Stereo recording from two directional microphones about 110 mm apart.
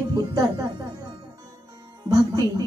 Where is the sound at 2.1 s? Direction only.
35° right (ahead or behind).